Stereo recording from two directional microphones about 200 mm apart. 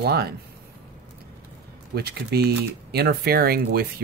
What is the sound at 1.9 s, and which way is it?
Speech, 50° right (ahead or behind).